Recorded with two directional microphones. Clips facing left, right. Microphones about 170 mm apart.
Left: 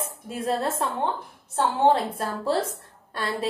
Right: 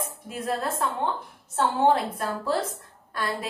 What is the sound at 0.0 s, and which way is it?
A woman's voice, 30° left (ahead or behind).